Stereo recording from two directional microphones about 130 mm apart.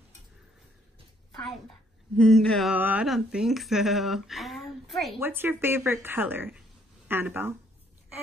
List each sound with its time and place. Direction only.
2.1 s speech: centre (ahead or behind)
2.7 s speech: 10° right (ahead or behind)
5.2 s speech: 15° right (ahead or behind)